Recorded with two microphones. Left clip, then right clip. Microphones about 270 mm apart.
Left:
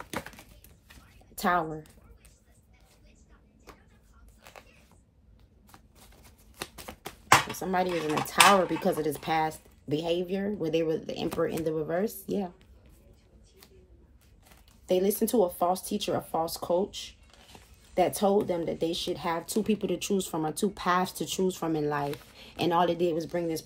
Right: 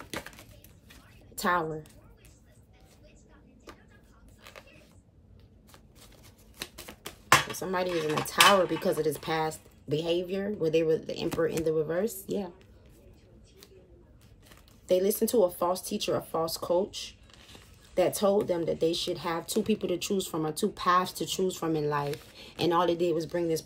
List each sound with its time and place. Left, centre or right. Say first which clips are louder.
0.8 s zipper: even; left
6.6 s speech: left 1 dB; centre
14.9 s speech: right 1 dB; left